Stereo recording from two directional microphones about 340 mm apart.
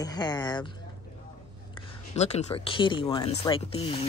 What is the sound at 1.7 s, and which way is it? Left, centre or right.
Speech, centre.